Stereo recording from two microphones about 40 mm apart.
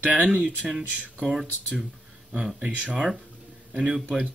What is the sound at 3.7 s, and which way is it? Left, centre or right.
Speech, right.